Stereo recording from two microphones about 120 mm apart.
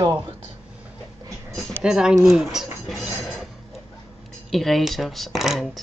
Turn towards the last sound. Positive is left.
turn(degrees=0)  # may be behind; listen again after turning